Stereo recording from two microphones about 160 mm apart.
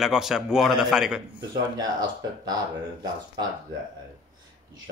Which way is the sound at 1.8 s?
25° right (ahead or behind).